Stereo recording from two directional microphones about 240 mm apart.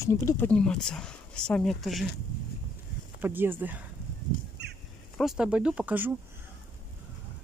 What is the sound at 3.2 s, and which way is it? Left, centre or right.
Speech, centre.